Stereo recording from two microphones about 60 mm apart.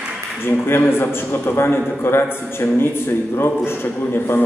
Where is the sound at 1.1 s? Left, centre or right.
Left.